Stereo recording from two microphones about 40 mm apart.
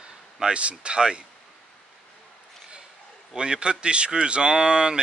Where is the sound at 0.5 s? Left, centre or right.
Right.